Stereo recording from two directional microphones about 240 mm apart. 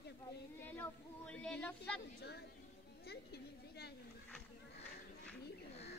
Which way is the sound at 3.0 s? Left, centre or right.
Left.